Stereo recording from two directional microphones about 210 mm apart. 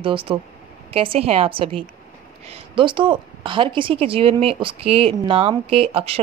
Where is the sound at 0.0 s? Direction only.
25° right (ahead or behind).